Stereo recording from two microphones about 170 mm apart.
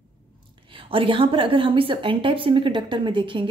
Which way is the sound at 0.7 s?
30° right (ahead or behind).